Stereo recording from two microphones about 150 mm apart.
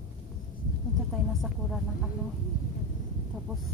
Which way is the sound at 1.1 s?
Centre (ahead or behind).